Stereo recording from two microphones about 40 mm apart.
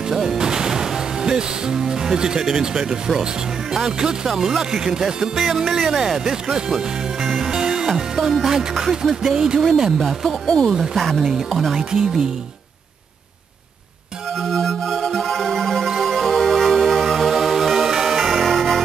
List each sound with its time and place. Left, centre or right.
0.1 s music: centre
3.7 s speech: centre
10.4 s speech: centre
11.1 s speech: centre
14.3 s music: centre
18.3 s music: centre